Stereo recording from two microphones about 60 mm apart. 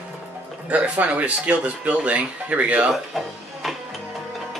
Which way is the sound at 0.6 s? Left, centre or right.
Right.